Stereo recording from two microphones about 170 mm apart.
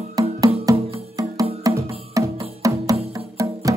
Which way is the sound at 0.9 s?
20° right (ahead or behind).